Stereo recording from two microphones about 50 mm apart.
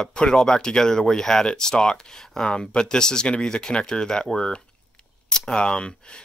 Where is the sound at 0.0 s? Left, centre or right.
Centre.